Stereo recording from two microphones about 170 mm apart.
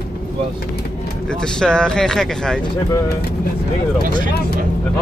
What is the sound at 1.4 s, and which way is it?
Speech, 5° left (ahead or behind).